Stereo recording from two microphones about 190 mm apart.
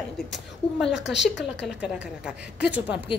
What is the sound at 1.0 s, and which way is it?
Speech, 65° left (ahead or behind).